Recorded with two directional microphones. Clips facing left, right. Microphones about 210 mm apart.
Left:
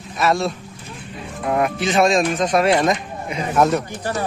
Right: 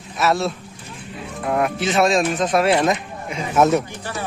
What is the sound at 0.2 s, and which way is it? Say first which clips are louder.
Speech: left 1 dB; 5° right (ahead or behind).